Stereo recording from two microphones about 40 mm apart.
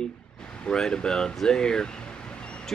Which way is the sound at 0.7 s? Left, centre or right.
Centre.